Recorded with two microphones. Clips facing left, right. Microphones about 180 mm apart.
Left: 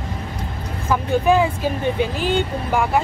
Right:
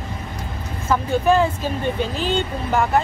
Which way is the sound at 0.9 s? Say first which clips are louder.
Left 1 dB; 10° left (ahead or behind).